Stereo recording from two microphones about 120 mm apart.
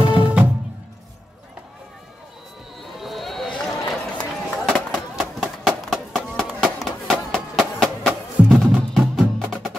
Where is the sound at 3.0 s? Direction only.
Centre (ahead or behind).